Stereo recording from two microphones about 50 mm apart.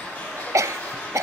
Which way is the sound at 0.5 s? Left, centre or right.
Right.